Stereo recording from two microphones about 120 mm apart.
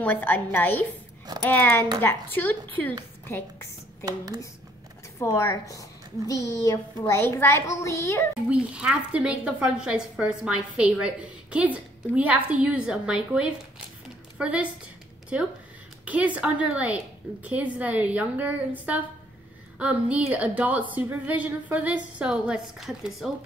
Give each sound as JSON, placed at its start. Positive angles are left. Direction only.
{"t": 0.0, "sound": "a woman's voice", "side_deg": 15}
{"t": 5.2, "sound": "a woman's voice", "side_deg": 25}
{"t": 8.5, "sound": "a woman's voice", "side_deg": -10}